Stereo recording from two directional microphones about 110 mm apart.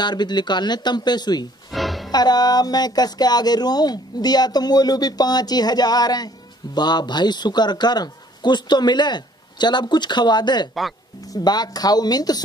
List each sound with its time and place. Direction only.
0.0 s speech: 40° left (ahead or behind)
1.7 s music: centre (ahead or behind)
2.0 s speech: 40° left (ahead or behind)
10.7 s speech: centre (ahead or behind)
11.2 s speech: 35° left (ahead or behind)